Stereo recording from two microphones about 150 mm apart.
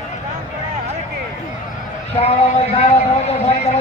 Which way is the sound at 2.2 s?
45° left (ahead or behind).